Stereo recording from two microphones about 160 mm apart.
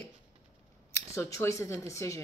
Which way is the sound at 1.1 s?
15° left (ahead or behind).